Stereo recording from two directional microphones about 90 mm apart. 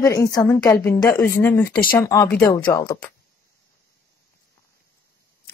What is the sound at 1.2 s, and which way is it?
Speech, 30° left (ahead or behind).